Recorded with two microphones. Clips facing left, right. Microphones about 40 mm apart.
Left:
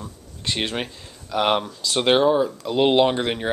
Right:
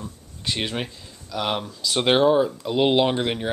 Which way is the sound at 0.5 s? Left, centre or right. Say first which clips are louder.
Left 1 dB; centre.